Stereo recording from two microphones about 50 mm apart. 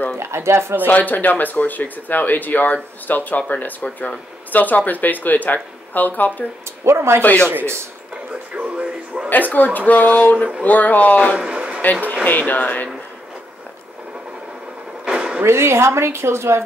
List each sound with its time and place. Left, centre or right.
0.2 s a woman's voice: right
0.8 s speech: left
3.8 s speech: left
4.5 s speech: left
6.8 s speech: right
8.6 s music: right
9.3 s speech: left
11.3 s a sound: centre
12.3 s speech: left
15.1 s a sound: right
15.4 s a woman's voice: right